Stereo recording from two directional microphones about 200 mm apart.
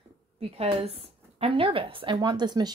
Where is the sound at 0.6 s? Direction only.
30° right (ahead or behind).